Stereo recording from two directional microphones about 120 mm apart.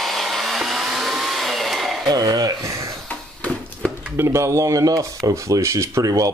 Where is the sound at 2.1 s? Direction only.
30° right (ahead or behind).